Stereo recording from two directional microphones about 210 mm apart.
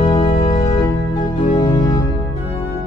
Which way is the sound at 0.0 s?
25° left (ahead or behind).